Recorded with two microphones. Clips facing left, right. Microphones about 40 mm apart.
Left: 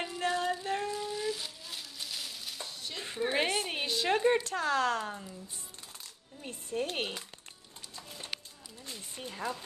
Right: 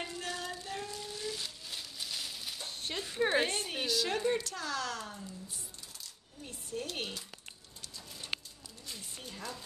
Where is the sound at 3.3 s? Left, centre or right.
Left.